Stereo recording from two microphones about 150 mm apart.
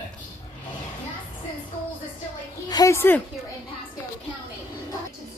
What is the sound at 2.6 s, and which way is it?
Speech, 25° left (ahead or behind).